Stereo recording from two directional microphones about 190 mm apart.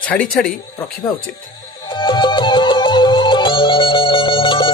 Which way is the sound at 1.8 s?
25° left (ahead or behind).